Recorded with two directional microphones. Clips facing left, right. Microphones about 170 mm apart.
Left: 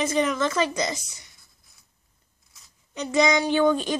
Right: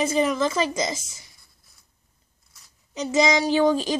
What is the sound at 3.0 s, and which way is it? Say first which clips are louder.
Child singing: right 1 dB; 5° right (ahead or behind).